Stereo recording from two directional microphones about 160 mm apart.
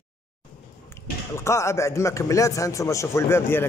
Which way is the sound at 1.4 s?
15° left (ahead or behind).